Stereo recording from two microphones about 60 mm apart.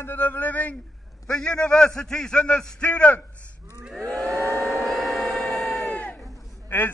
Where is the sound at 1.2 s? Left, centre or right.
Centre.